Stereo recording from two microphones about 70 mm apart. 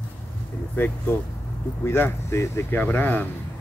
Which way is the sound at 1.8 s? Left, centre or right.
Left.